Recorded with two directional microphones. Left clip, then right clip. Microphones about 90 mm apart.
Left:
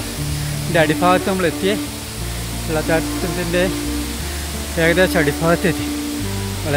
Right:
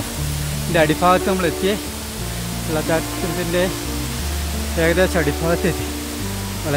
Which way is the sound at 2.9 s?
15° right (ahead or behind).